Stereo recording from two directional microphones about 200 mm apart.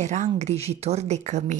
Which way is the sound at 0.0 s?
35° right (ahead or behind).